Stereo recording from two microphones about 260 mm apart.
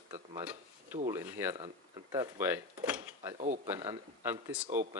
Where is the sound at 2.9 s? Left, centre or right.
Centre.